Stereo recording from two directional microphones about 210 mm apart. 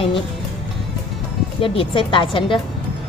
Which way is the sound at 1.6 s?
25° left (ahead or behind).